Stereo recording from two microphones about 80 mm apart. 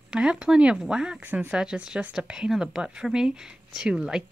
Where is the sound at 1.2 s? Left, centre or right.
Right.